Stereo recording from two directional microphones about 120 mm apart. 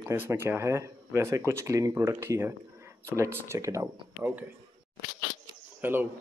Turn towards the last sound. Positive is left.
turn(degrees=-15)  # may be behind; listen again after turning